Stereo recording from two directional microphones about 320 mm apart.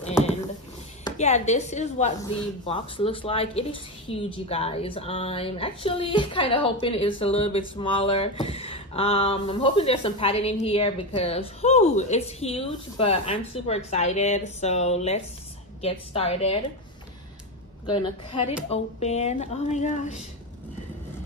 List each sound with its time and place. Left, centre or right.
1.0 s a woman's voice: left
17.8 s a woman's voice: centre